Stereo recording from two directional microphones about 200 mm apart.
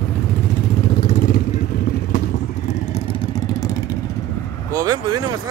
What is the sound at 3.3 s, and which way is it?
Vehicle, 20° left (ahead or behind).